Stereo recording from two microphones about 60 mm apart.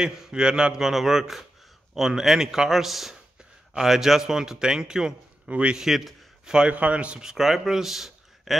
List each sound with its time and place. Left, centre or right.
0.0 s a man's voice: centre
5.8 s a man's voice: centre
6.5 s a man's voice: centre
7.2 s speech: centre